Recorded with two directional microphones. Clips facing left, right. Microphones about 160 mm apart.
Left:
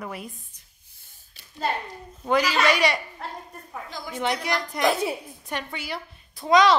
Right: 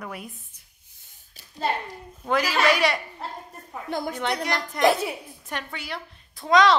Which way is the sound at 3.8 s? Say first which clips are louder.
Right 12 dB; 60° right (ahead or behind).